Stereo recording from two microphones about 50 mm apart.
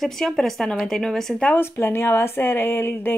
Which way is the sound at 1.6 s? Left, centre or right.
Left.